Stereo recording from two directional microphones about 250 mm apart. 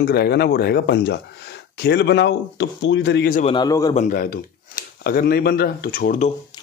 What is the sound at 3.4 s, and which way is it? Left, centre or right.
Speech, centre.